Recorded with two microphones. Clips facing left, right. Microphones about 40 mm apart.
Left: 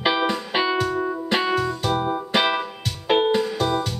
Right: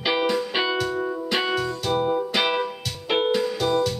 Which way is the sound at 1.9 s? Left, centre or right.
Centre.